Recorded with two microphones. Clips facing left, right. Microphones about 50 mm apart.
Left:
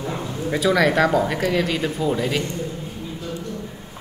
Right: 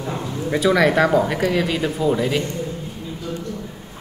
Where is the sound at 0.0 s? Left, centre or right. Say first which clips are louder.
Right 1 dB; centre.